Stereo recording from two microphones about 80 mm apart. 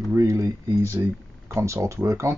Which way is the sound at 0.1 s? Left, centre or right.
Right.